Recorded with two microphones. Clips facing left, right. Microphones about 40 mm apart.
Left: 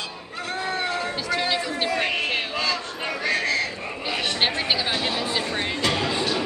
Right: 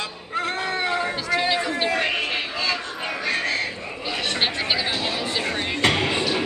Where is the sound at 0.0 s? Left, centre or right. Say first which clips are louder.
Right 6 dB; right.